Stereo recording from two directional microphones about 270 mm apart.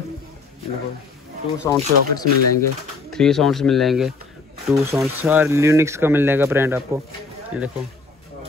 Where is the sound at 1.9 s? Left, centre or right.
Right.